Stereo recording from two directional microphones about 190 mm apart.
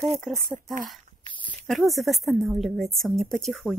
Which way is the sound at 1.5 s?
Centre (ahead or behind).